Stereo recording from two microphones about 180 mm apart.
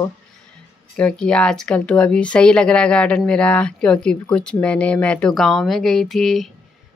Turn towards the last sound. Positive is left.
turn(degrees=0)  # may be behind; listen again after turning